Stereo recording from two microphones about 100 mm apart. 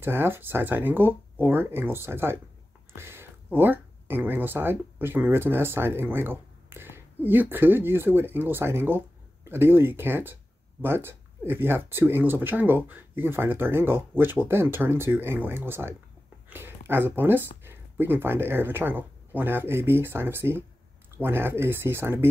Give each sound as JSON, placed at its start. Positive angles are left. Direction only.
{"t": 0.0, "sound": "speech", "side_deg": -20}
{"t": 2.9, "sound": "whispering", "side_deg": -25}
{"t": 3.5, "sound": "speech", "side_deg": -20}